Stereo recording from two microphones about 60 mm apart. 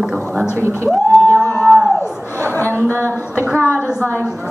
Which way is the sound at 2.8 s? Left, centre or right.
Right.